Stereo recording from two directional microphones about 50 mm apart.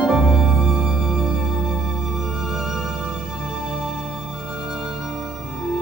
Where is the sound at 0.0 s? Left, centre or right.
Centre.